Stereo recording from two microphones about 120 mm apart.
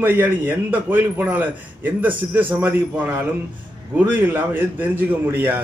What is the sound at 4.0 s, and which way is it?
Speech, 15° right (ahead or behind).